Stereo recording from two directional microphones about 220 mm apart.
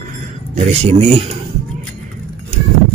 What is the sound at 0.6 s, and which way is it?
Speech, 30° right (ahead or behind).